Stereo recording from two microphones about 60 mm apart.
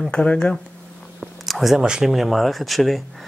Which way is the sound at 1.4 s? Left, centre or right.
Centre.